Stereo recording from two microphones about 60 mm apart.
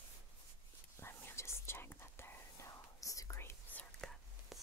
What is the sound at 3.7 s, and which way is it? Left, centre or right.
Whispering, left.